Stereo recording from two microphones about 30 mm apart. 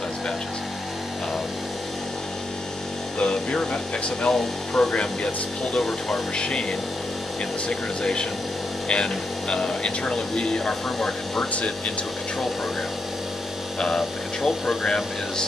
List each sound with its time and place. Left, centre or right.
3.2 s speech: left
4.3 s speech: centre
4.9 s speech: left
5.8 s speech: centre
6.3 s speech: left
7.6 s speech: left
13.9 s speech: centre